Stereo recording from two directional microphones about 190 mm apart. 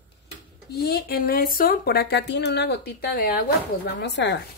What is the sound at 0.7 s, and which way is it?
Speech, 55° left (ahead or behind).